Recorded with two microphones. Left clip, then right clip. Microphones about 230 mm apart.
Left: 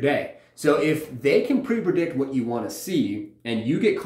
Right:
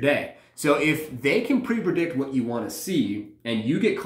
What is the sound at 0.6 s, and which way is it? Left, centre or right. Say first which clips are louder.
Speech: left 1 dB; centre.